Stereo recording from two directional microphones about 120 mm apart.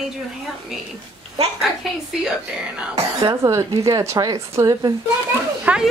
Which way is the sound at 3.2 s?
25° right (ahead or behind).